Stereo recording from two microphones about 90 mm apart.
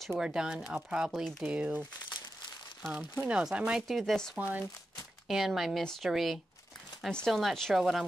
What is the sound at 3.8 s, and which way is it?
Speech, centre (ahead or behind).